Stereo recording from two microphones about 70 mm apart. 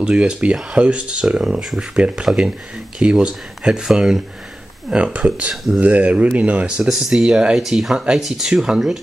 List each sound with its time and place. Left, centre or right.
0.0 s speech: centre
2.0 s speech: centre
4.8 s speech: centre
5.5 s speech: centre
5.8 s speech: right